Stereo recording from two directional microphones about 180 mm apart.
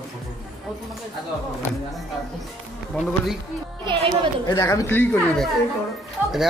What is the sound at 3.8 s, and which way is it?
Speech, 25° right (ahead or behind).